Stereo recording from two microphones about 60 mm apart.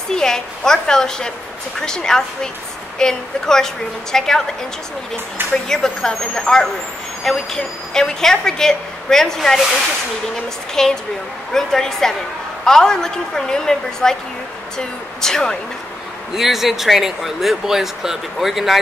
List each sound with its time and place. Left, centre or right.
0.1 s a woman's voice: centre
5.5 s a woman's voice: centre
10.7 s a woman's voice: centre
16.3 s speech: centre